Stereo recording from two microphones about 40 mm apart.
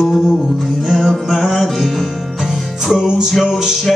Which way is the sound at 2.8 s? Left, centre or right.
Centre.